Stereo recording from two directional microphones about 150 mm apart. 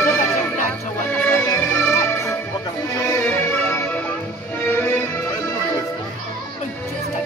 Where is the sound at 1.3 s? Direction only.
20° left (ahead or behind).